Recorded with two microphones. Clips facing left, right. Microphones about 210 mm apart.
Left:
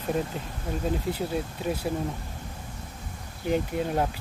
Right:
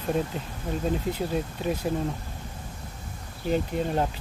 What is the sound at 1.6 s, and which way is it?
Speech, 5° left (ahead or behind).